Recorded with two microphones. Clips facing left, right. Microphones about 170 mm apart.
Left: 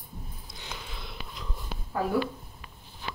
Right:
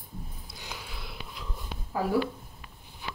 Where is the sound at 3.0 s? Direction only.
10° right (ahead or behind).